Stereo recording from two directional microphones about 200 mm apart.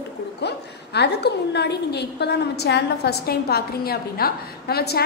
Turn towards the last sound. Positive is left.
turn(degrees=50)  # may be behind; listen again after turning